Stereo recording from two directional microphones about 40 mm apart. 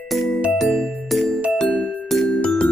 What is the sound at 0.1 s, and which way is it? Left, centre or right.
Music, centre.